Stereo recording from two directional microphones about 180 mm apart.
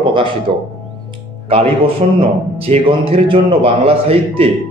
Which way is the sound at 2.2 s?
30° right (ahead or behind).